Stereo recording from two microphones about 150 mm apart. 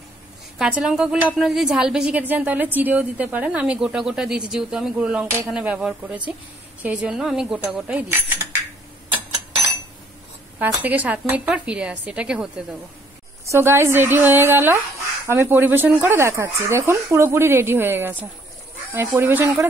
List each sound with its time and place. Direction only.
0.6 s a woman's voice: 5° right (ahead or behind)
10.6 s a woman's voice: 10° right (ahead or behind)